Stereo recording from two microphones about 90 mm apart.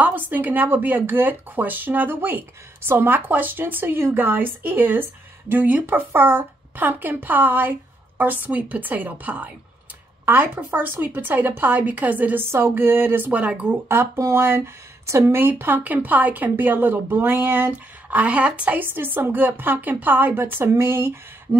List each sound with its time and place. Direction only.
0.0 s speech: 20° right (ahead or behind)
13.8 s speech: 30° right (ahead or behind)